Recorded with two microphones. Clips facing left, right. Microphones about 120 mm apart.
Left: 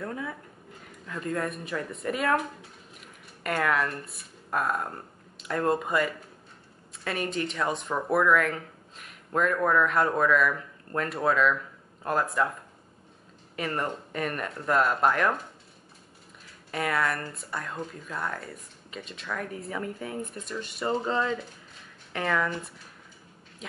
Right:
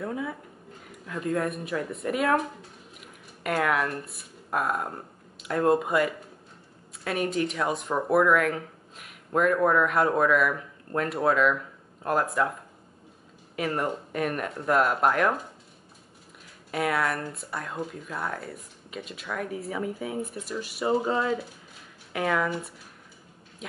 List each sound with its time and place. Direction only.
0.0 s speech: 5° right (ahead or behind)
13.6 s speech: 5° right (ahead or behind)
16.7 s speech: 5° right (ahead or behind)